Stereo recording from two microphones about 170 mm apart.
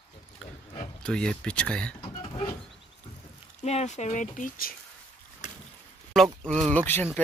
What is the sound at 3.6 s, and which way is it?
Speech, 40° left (ahead or behind).